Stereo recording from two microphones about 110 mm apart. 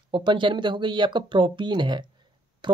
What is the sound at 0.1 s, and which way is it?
Speech, 45° right (ahead or behind).